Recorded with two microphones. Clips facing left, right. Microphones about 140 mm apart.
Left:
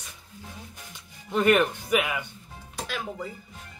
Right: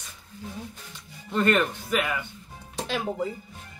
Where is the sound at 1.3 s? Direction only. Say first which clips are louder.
Left 2 dB; 15° left (ahead or behind).